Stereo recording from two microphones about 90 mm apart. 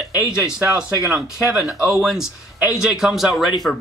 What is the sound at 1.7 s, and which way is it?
Speech, 15° right (ahead or behind).